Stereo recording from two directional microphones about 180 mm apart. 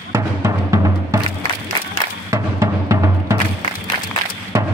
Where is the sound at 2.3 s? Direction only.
15° right (ahead or behind).